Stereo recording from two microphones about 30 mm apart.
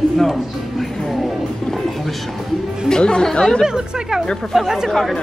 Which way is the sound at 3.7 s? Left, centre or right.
Right.